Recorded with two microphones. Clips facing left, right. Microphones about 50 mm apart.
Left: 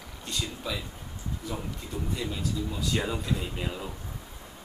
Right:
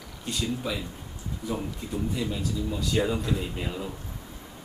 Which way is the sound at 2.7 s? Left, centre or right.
Centre.